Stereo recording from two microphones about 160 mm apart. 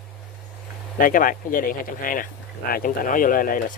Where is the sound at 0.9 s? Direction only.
60° left (ahead or behind).